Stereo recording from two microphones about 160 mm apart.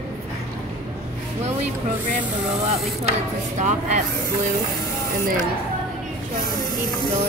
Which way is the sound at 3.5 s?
45° right (ahead or behind).